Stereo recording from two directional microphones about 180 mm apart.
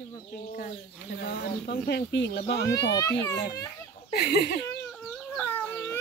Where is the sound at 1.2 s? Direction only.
65° left (ahead or behind).